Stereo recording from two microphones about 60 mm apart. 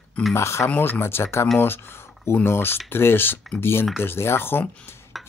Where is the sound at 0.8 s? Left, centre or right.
Left.